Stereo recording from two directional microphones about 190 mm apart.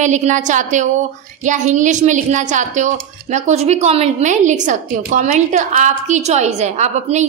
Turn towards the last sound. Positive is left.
turn(degrees=-35)  # may be behind; listen again after turning